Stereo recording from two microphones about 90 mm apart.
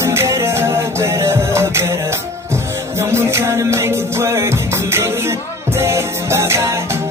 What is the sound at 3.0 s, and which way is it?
Music, 30° right (ahead or behind).